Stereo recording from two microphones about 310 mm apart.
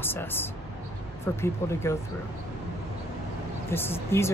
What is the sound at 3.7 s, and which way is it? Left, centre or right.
Speech, centre.